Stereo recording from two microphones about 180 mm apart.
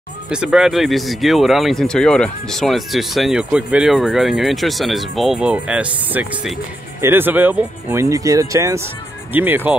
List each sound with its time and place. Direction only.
0.3 s speech: 5° right (ahead or behind)